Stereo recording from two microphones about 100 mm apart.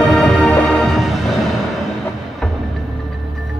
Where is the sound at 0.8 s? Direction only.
Centre (ahead or behind).